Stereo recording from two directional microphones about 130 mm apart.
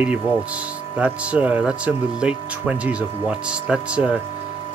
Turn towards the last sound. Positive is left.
turn(degrees=-10)  # may be behind; listen again after turning